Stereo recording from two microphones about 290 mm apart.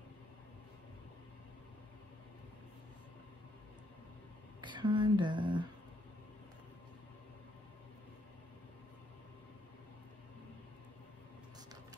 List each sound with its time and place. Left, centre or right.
4.6 s speech: centre